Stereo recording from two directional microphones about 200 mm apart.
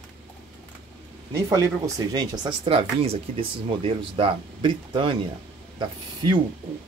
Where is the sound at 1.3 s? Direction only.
15° right (ahead or behind).